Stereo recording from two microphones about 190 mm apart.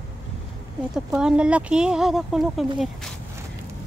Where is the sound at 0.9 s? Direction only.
5° right (ahead or behind).